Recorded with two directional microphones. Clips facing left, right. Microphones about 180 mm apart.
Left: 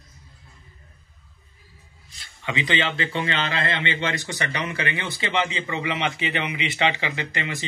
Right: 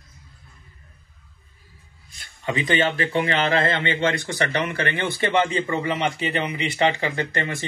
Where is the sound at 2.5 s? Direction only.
45° right (ahead or behind).